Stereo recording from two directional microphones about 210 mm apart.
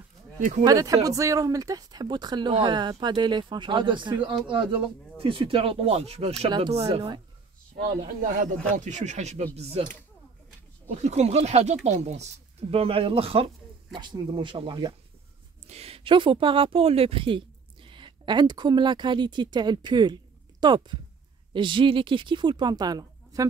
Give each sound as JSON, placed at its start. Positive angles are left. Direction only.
{"t": 0.4, "sound": "speech", "side_deg": -35}
{"t": 0.7, "sound": "speech", "side_deg": -15}
{"t": 8.7, "sound": "speech", "side_deg": -35}
{"t": 10.9, "sound": "a woman's voice", "side_deg": -30}